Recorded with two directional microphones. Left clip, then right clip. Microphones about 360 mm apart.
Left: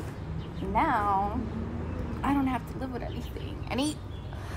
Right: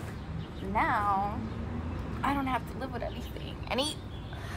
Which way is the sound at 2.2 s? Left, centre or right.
Centre.